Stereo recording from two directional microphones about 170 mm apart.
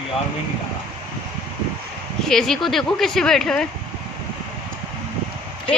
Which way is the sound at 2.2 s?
5° left (ahead or behind).